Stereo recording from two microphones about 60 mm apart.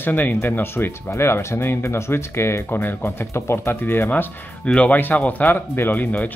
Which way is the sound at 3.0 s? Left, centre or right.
Left.